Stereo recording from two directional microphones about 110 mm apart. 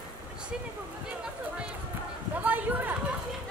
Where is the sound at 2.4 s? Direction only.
15° right (ahead or behind).